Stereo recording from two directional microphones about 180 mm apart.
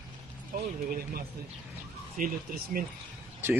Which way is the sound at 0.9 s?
55° right (ahead or behind).